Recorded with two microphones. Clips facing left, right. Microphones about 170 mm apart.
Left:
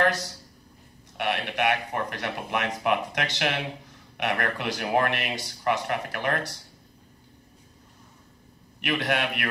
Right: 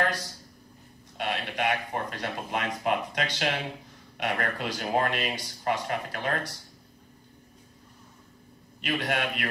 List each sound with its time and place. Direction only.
0.0 s a sound: 75° left (ahead or behind)
1.1 s speech: 65° left (ahead or behind)
9.1 s speech: 70° left (ahead or behind)